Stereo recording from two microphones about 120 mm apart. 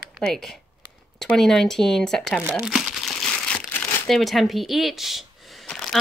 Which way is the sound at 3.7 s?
15° left (ahead or behind).